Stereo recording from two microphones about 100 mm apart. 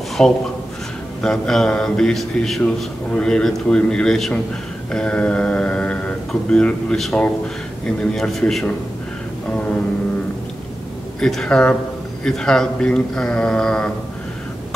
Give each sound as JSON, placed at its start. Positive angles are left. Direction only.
{"t": 0.2, "sound": "a man's voice", "side_deg": 5}
{"t": 4.9, "sound": "mantra", "side_deg": 10}
{"t": 6.5, "sound": "a man's voice", "side_deg": 10}
{"t": 11.1, "sound": "speech", "side_deg": 5}